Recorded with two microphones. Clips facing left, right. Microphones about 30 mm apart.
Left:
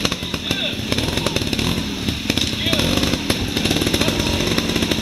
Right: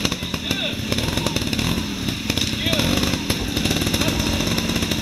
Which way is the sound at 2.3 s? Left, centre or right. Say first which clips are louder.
Left 2 dB; centre.